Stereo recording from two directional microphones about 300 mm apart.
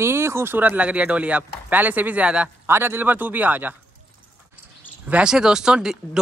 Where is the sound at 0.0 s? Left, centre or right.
Centre.